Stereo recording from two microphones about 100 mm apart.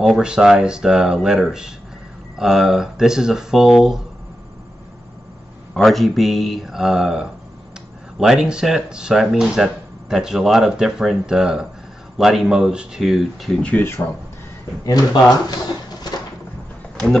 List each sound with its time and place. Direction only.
0.0 s speech: 5° right (ahead or behind)
5.8 s speech: centre (ahead or behind)
13.7 s speech: 20° left (ahead or behind)
14.9 s speech: 40° left (ahead or behind)